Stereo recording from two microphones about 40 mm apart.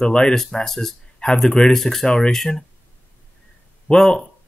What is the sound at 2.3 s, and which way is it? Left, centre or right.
Speech, centre.